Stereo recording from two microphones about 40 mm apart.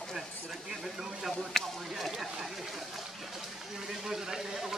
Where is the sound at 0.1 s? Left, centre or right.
Centre.